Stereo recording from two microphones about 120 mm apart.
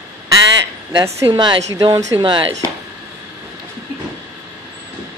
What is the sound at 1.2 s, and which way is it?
A woman's voice, 40° right (ahead or behind).